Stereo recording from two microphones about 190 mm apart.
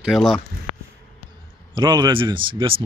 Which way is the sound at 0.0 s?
Centre (ahead or behind).